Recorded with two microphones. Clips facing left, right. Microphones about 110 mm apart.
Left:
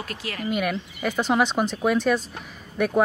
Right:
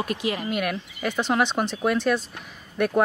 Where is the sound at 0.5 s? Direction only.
Centre (ahead or behind).